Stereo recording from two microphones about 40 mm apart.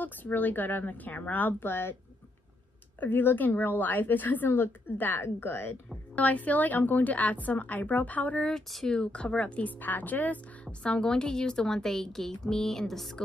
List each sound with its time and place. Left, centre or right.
0.0 s speech: left
1.6 s speech: left
3.0 s a woman's voice: left
6.1 s a woman's voice: left
8.7 s speech: centre
9.0 s speech: left
9.7 s speech: left
11.0 s speech: centre